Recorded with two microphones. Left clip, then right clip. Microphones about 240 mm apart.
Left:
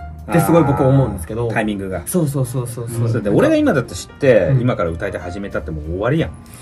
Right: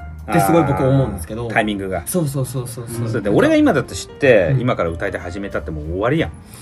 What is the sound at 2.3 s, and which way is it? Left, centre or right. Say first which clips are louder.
Speech: left 2 dB; left.